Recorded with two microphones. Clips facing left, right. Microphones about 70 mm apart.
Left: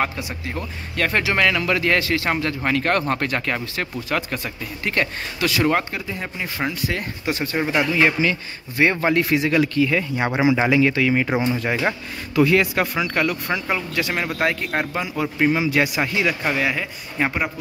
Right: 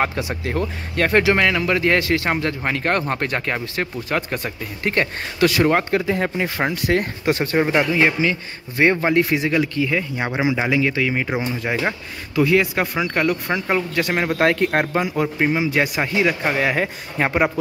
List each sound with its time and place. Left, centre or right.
0.1 s speech: right
0.9 s speech: right
6.0 s speech: right
6.9 s speech: right
7.5 s speech: right
12.9 s speech: right
14.4 s speech: right
14.7 s speech: right
15.3 s speech: centre
16.5 s speech: right